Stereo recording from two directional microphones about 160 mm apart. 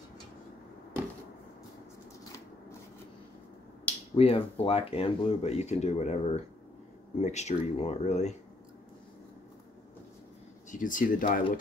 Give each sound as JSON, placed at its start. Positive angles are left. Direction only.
{"t": 4.1, "sound": "speech", "side_deg": 35}
{"t": 10.7, "sound": "speech", "side_deg": 55}